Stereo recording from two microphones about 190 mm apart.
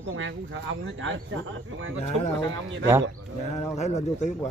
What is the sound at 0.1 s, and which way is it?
Speech, 75° right (ahead or behind).